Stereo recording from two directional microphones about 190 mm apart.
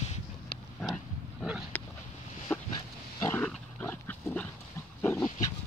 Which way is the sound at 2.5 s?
10° left (ahead or behind).